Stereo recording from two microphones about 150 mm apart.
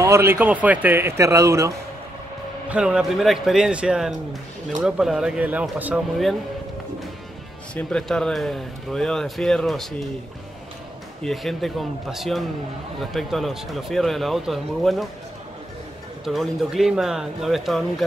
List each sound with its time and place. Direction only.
0.0 s a man's voice: 15° right (ahead or behind)
2.7 s a man's voice: 5° right (ahead or behind)
7.7 s speech: 5° left (ahead or behind)
11.2 s speech: centre (ahead or behind)
16.3 s speech: centre (ahead or behind)